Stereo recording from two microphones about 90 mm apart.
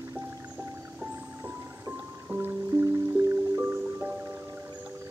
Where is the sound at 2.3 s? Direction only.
25° right (ahead or behind).